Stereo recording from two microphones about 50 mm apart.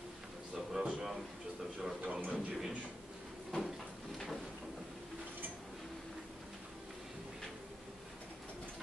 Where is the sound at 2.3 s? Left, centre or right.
Right.